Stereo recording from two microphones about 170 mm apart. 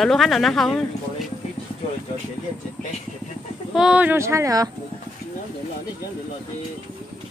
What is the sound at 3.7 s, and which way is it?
Speech, 5° right (ahead or behind).